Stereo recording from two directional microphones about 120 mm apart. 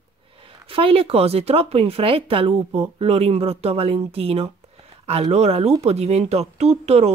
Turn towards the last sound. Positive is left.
turn(degrees=-60)  # may be behind; listen again after turning